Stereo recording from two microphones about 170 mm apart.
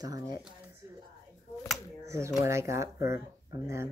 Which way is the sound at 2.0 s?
15° right (ahead or behind).